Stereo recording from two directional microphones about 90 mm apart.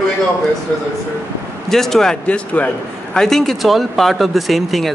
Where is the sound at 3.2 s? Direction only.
5° left (ahead or behind).